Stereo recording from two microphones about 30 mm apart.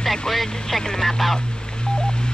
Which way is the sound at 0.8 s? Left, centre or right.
Centre.